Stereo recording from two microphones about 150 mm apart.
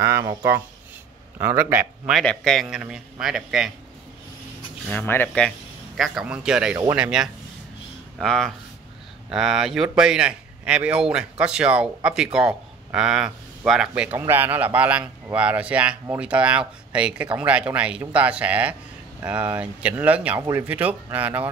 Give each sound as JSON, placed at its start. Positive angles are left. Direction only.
{"t": 0.0, "sound": "a man's voice", "side_deg": -20}
{"t": 2.1, "sound": "a man's voice", "side_deg": 0}
{"t": 4.8, "sound": "speech", "side_deg": 10}
{"t": 5.9, "sound": "a man's voice", "side_deg": 0}